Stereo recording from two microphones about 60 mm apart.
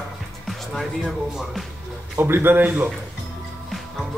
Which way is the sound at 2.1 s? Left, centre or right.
Right.